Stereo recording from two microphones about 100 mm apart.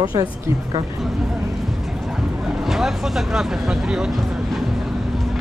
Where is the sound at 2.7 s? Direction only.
5° right (ahead or behind).